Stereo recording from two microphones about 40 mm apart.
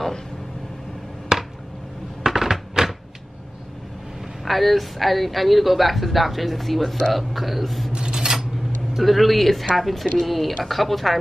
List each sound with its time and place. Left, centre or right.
1.3 s a sound: centre
4.5 s a woman's voice: centre
7.9 s cutlery: centre
9.0 s a woman's voice: centre